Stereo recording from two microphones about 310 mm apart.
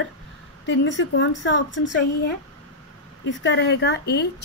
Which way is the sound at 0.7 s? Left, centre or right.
Left.